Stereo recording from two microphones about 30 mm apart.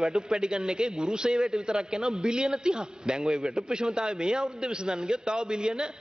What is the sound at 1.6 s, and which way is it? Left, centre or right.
A man's voice, right.